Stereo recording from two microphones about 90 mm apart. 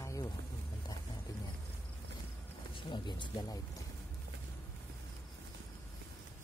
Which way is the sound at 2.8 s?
55° left (ahead or behind).